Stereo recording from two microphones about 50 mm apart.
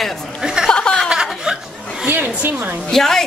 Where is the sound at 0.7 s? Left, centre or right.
Centre.